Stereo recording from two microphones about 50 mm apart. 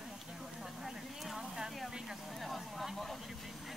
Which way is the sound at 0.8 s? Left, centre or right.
Centre.